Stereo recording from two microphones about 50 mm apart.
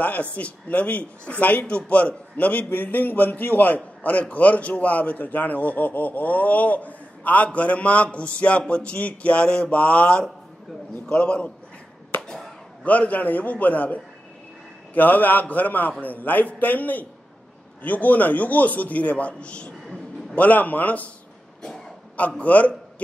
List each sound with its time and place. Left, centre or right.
0.0 s a man's voice: left
12.2 s a sound: centre
12.8 s a man's voice: left
20.3 s a man's voice: left
21.6 s a sound: centre
22.4 s a man's voice: left